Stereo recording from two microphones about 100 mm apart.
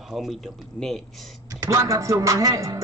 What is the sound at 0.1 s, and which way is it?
Speech, centre (ahead or behind).